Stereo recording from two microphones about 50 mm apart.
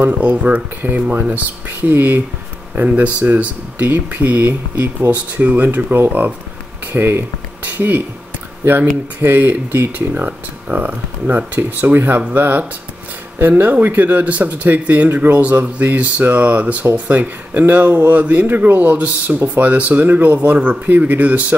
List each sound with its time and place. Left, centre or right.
0.2 s speech: right
5.1 s speech: right
9.2 s speech: right